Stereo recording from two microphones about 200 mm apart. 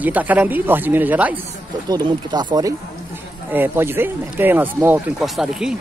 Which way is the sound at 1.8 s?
20° right (ahead or behind).